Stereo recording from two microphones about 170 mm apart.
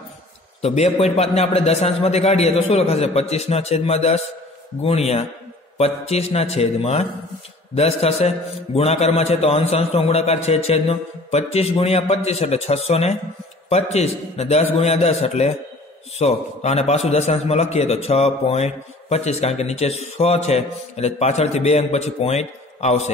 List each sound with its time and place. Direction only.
0.6 s a man's voice: 40° left (ahead or behind)